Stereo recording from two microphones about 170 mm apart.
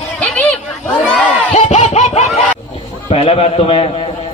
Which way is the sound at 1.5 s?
40° left (ahead or behind).